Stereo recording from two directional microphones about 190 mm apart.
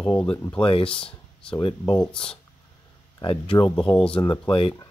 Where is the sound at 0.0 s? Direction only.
5° left (ahead or behind).